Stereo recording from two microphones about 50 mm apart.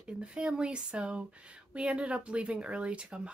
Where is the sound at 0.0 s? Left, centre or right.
Centre.